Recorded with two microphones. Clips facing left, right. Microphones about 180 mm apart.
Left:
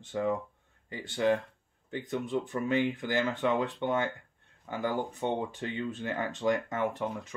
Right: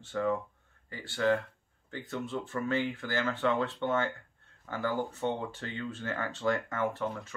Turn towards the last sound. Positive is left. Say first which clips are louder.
# even
turn(degrees=15)  # may be behind; listen again after turning